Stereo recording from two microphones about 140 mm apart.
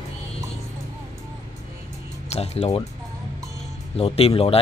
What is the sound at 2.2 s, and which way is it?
Speech, 50° left (ahead or behind).